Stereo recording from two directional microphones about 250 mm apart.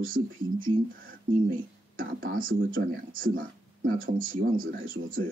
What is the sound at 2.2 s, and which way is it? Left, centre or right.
Speech, right.